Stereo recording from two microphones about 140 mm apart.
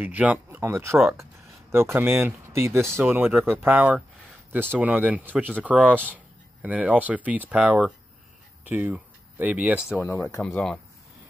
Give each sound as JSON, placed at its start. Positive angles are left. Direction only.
{"t": 0.0, "sound": "speech", "side_deg": -10}
{"t": 6.0, "sound": "a sound", "side_deg": -10}
{"t": 7.1, "sound": "speech", "side_deg": -10}
{"t": 10.0, "sound": "speech", "side_deg": 20}
{"t": 10.4, "sound": "speech", "side_deg": 5}